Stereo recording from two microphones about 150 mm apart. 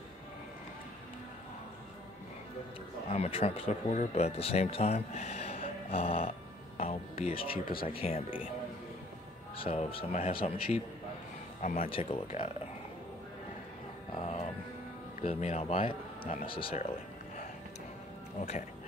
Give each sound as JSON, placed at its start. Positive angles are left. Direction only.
{"t": 3.1, "sound": "speech", "side_deg": 40}
{"t": 6.8, "sound": "music", "side_deg": 40}
{"t": 7.5, "sound": "speech", "side_deg": 75}
{"t": 7.9, "sound": "speech", "side_deg": 40}
{"t": 9.6, "sound": "speech", "side_deg": 40}
{"t": 11.6, "sound": "speech", "side_deg": 75}
{"t": 11.9, "sound": "speech", "side_deg": 40}
{"t": 14.2, "sound": "music", "side_deg": 45}
{"t": 15.1, "sound": "speech", "side_deg": 45}